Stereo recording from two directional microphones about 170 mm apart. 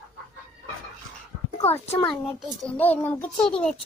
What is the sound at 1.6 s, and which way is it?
Speech, 40° left (ahead or behind).